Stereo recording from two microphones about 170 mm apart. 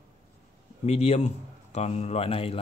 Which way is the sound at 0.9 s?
40° left (ahead or behind).